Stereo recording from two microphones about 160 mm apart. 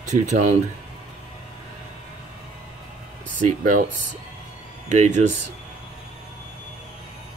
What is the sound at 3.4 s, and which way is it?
Speech, 55° right (ahead or behind).